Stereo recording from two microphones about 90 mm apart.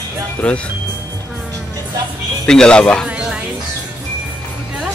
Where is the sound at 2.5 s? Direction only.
10° left (ahead or behind).